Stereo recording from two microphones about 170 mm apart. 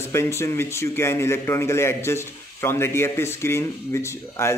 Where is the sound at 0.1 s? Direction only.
15° left (ahead or behind).